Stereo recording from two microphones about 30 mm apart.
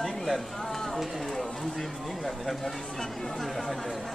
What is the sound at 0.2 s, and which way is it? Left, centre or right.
Speech, centre.